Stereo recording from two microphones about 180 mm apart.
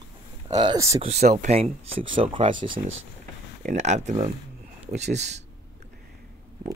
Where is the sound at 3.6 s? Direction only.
40° right (ahead or behind).